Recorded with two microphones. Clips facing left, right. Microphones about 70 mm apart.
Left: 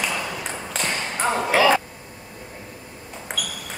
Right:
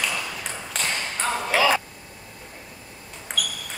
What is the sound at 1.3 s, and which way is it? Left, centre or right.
Ping, left.